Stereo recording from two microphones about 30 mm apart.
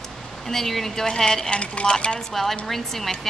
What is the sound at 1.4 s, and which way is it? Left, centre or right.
Speech, left.